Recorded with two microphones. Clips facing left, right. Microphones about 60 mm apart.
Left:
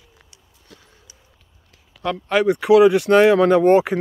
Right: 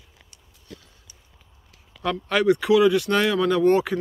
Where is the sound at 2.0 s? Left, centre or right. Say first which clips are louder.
Left 3 dB; centre.